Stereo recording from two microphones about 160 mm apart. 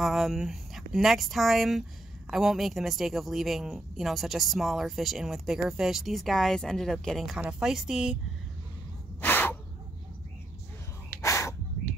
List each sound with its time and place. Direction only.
0.0 s speech: centre (ahead or behind)
9.2 s gasp: 10° left (ahead or behind)
11.1 s gasp: 20° left (ahead or behind)